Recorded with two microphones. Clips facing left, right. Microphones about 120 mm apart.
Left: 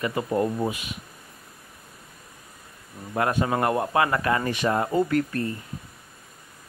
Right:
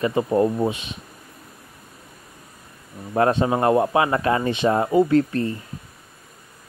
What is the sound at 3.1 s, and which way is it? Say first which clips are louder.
Speech: right 5 dB; 25° right (ahead or behind).